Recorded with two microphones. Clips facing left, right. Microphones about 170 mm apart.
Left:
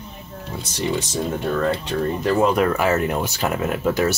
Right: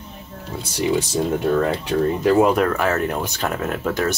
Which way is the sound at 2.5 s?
5° left (ahead or behind).